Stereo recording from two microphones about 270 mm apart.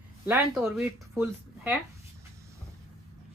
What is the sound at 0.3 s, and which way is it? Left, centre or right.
A woman's voice, centre.